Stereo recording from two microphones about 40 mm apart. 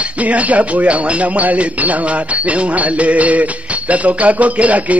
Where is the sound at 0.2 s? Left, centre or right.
Right.